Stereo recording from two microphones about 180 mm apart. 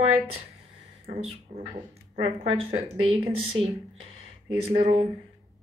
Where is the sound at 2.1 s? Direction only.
35° right (ahead or behind).